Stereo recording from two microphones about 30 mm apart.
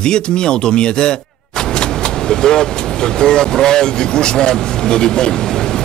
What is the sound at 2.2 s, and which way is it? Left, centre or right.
Speech, left.